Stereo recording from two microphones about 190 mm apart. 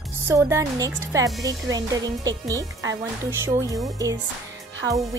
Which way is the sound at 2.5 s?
20° right (ahead or behind).